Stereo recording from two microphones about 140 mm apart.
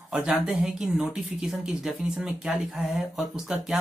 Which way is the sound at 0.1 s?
5° right (ahead or behind).